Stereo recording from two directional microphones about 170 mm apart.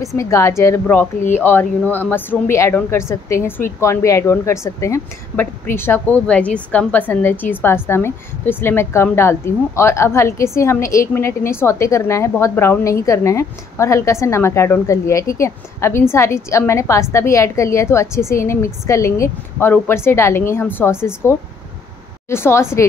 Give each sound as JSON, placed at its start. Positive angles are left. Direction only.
{"t": 0.0, "sound": "a woman's voice", "side_deg": 20}